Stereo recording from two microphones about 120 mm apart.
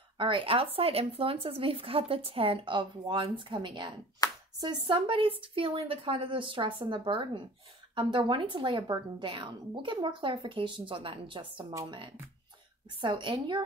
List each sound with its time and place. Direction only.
0.2 s speech: 45° right (ahead or behind)
4.2 s a sound: 30° left (ahead or behind)
4.6 s speech: 35° right (ahead or behind)
13.0 s a woman's voice: 40° right (ahead or behind)